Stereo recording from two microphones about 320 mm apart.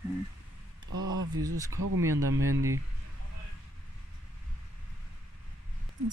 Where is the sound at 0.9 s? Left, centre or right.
Right.